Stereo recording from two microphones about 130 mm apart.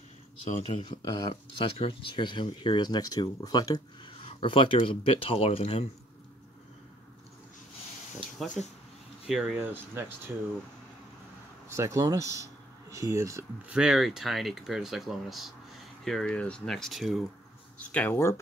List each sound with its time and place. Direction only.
0.7 s speech: 35° left (ahead or behind)
1.3 s speech: 45° left (ahead or behind)
4.2 s speech: 45° left (ahead or behind)
8.6 s speech: centre (ahead or behind)
9.6 s speech: 15° right (ahead or behind)
11.7 s speech: 25° right (ahead or behind)
13.7 s speech: 5° right (ahead or behind)
17.9 s speech: 15° left (ahead or behind)